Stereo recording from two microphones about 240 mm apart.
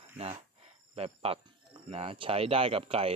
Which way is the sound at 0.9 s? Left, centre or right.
Right.